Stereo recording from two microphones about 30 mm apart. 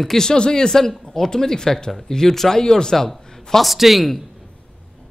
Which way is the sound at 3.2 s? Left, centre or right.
Centre.